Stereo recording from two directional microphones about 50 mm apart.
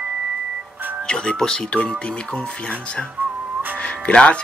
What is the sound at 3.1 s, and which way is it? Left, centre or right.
Whistling, right.